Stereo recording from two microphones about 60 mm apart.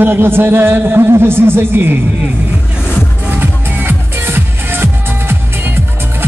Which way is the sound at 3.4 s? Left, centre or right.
Right.